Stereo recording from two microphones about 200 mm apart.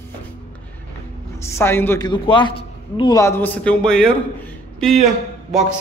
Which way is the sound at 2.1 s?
25° left (ahead or behind).